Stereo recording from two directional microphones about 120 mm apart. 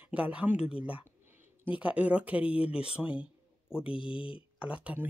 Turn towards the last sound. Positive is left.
turn(degrees=-10)  # may be behind; listen again after turning